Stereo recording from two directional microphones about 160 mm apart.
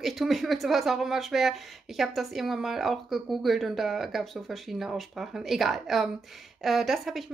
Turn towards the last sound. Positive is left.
turn(degrees=0)  # may be behind; listen again after turning